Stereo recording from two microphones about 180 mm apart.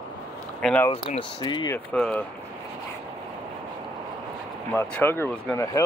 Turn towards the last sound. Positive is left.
turn(degrees=15)  # may be behind; listen again after turning